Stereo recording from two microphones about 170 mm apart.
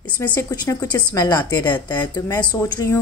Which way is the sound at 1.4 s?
10° left (ahead or behind).